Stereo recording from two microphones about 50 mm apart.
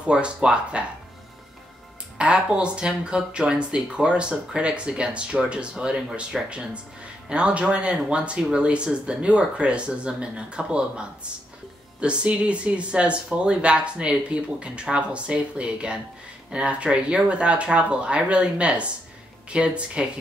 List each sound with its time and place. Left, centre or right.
0.0 s speech: right
2.1 s speech: centre
6.3 s speech: centre
7.2 s speech: right